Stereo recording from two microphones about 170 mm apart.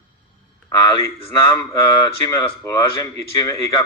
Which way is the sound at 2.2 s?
20° left (ahead or behind).